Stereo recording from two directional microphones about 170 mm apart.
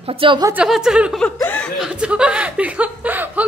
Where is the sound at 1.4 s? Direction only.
5° left (ahead or behind).